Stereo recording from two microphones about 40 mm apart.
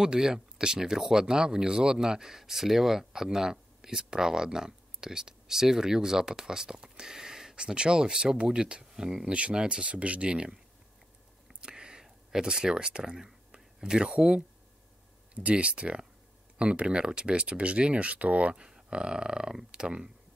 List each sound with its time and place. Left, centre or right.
0.0 s speech: centre
9.3 s speech: right
11.4 s a sound: centre
14.1 s speech: right
18.5 s speech: right